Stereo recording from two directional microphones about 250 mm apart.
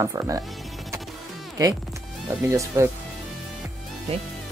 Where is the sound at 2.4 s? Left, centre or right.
Centre.